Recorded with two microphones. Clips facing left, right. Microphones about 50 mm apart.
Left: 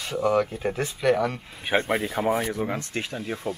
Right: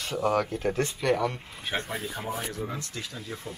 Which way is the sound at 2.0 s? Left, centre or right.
Left.